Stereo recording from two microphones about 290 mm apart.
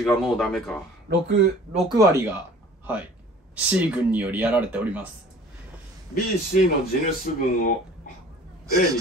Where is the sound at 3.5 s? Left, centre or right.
Centre.